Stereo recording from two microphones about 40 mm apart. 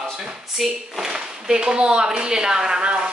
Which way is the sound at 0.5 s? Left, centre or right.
Centre.